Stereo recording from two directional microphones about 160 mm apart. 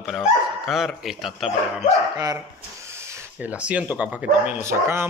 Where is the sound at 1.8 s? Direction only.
25° right (ahead or behind).